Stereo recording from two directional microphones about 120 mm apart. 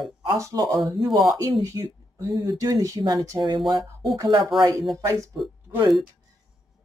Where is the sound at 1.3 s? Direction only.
30° right (ahead or behind).